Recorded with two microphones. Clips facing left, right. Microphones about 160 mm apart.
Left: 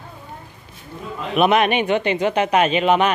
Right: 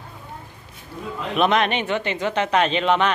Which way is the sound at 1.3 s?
10° left (ahead or behind).